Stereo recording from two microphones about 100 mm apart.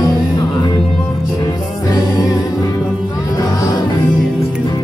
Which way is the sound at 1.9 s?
40° left (ahead or behind).